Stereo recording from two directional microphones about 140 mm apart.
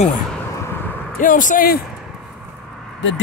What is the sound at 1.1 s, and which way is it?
Speech, 70° left (ahead or behind).